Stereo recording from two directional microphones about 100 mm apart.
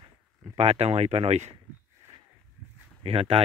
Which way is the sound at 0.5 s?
90° right.